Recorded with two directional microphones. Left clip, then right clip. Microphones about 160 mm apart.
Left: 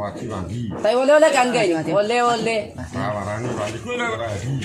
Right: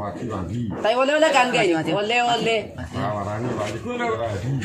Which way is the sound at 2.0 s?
45° left (ahead or behind).